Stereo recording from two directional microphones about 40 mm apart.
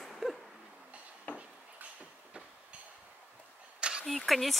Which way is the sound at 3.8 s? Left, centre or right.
Right.